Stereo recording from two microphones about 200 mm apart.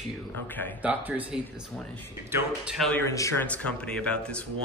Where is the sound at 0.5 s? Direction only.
10° left (ahead or behind).